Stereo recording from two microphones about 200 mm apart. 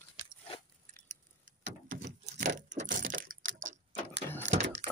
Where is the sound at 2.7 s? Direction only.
40° right (ahead or behind).